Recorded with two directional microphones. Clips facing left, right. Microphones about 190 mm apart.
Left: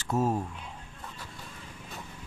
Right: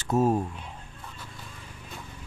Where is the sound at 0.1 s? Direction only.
20° right (ahead or behind).